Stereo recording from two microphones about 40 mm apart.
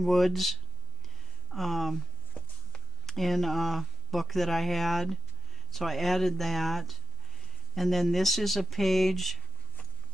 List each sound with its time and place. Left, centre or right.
0.0 s speech: centre
3.1 s speech: centre